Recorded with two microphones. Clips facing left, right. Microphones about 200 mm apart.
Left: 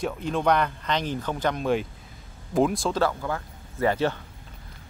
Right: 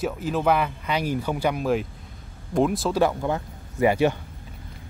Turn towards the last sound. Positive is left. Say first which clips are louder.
# right 4 dB
turn(degrees=-15)  # may be behind; listen again after turning